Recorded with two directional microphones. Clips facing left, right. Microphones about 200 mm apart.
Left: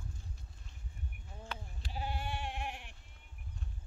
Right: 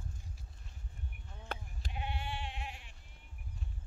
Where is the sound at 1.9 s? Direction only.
35° left (ahead or behind); by 2.9 s 55° left (ahead or behind).